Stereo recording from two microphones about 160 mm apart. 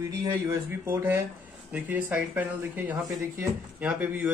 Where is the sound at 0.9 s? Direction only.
15° right (ahead or behind).